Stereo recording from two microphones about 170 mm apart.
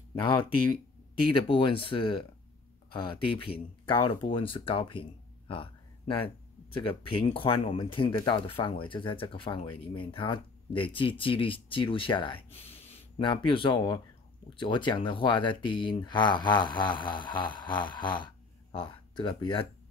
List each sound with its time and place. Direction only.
0.2 s speech: 30° left (ahead or behind)